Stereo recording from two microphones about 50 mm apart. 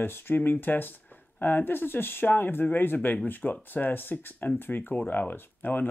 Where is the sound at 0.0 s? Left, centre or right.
Left.